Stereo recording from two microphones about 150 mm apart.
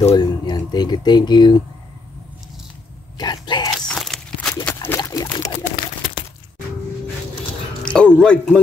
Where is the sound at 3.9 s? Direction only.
Centre (ahead or behind).